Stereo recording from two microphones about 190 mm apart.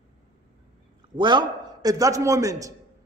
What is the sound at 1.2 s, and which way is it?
A woman's voice, 25° right (ahead or behind).